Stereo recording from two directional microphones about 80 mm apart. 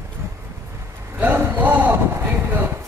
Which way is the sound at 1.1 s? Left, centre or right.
Right.